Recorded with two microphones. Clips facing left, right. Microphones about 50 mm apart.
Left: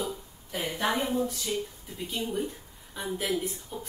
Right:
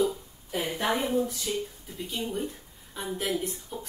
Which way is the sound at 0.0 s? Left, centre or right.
Centre.